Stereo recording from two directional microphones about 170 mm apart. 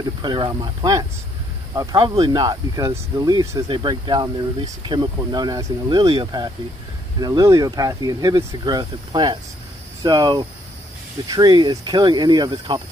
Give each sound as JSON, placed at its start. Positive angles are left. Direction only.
{"t": 0.2, "sound": "speech", "side_deg": -25}